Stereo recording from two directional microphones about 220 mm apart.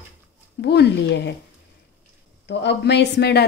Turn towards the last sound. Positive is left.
turn(degrees=45)  # may be behind; listen again after turning